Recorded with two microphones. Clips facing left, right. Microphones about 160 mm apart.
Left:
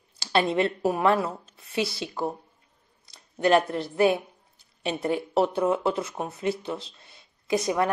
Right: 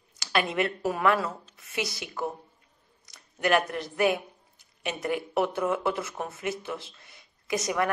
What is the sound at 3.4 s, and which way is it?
A woman's voice, 25° left (ahead or behind).